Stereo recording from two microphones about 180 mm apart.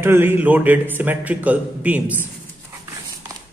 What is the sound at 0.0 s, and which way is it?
A man's voice, 10° right (ahead or behind).